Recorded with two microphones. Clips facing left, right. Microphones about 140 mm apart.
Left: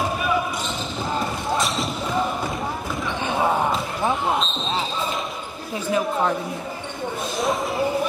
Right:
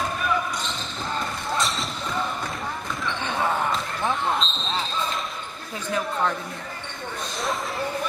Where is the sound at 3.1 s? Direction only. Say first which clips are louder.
Left 4 dB; 10° left (ahead or behind).